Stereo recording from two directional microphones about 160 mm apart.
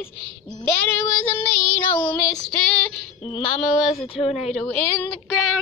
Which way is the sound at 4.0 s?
40° left (ahead or behind).